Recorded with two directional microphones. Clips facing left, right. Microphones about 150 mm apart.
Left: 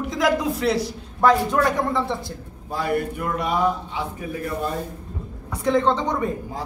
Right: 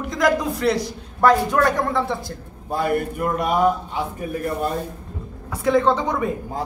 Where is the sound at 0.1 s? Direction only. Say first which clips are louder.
Right 2 dB; 5° left (ahead or behind).